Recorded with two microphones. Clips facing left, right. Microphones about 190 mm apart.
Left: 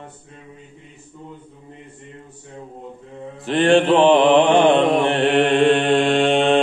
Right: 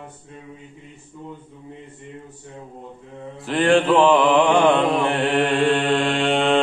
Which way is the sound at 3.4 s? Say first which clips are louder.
Left 2 dB; 25° left (ahead or behind).